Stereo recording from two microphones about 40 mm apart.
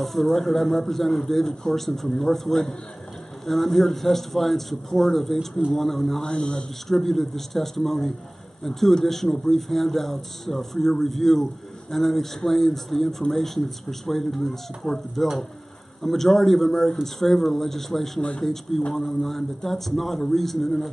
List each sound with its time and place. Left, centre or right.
0.0 s speech: centre
6.2 s speech: left
6.9 s speech: centre